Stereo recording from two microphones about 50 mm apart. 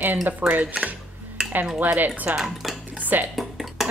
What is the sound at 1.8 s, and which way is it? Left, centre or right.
Speech, right.